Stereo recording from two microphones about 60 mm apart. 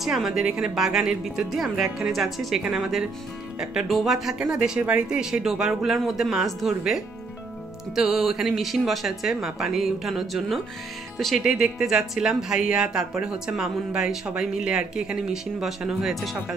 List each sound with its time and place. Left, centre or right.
0.0 s a woman's voice: centre
4.6 s speech: centre
5.0 s speech: centre
7.9 s a woman's voice: centre